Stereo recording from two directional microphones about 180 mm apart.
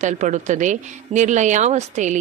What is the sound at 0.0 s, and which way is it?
A woman's voice, 40° right (ahead or behind).